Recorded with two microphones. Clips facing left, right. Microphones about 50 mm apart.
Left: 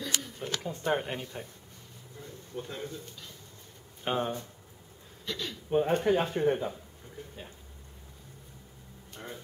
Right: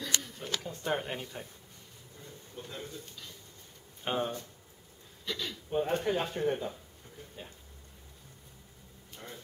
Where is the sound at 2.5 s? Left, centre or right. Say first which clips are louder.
Left 5 dB; centre.